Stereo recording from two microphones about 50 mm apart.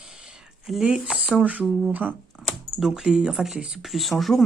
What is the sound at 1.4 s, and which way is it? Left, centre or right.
Speech, right.